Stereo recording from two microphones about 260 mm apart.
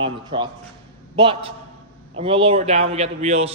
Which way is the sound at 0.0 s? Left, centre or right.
Centre.